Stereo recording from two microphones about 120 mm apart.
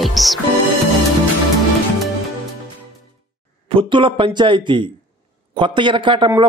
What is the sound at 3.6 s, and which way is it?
A man's voice, 45° right (ahead or behind).